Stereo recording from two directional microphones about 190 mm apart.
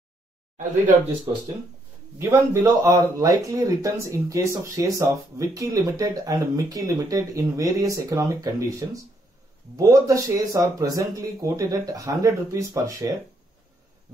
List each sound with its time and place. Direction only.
2.1 s speech: 15° right (ahead or behind)